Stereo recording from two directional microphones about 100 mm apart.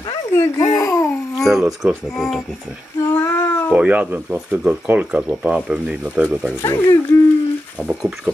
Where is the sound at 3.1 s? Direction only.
20° left (ahead or behind).